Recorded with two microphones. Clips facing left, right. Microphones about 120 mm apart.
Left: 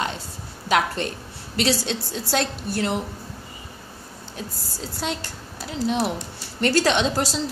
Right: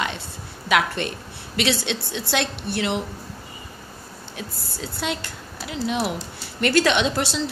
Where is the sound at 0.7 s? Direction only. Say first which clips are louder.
Even; 35° left (ahead or behind).